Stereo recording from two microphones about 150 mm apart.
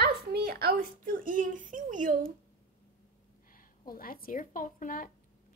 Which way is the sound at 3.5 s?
70° left (ahead or behind).